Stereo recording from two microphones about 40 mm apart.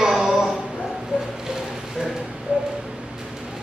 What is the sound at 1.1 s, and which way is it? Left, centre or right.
Music, right.